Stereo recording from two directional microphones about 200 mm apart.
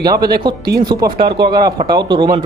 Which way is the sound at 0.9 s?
20° right (ahead or behind).